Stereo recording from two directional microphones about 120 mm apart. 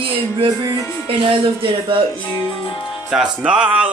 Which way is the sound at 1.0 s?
45° right (ahead or behind).